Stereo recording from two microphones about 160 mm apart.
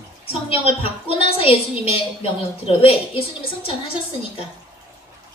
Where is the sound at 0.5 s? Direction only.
35° left (ahead or behind).